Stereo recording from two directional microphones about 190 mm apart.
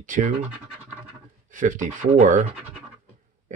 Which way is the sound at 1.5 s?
40° right (ahead or behind).